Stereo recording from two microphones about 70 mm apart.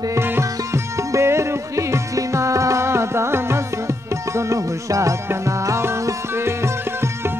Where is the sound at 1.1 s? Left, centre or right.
Right.